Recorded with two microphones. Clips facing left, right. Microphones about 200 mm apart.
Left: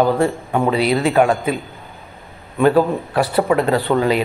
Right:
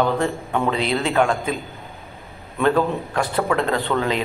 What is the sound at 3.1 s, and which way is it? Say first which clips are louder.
Speech: left 5 dB; 10° left (ahead or behind).